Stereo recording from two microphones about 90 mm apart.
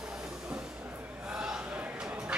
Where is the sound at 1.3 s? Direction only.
10° right (ahead or behind).